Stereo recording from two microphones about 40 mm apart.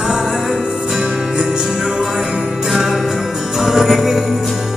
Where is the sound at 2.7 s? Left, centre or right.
Centre.